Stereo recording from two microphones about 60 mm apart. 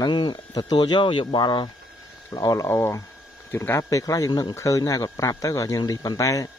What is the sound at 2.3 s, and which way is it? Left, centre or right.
Speech, left.